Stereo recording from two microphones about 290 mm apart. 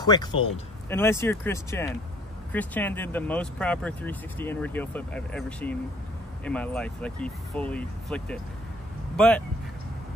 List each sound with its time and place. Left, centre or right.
0.0 s speech: centre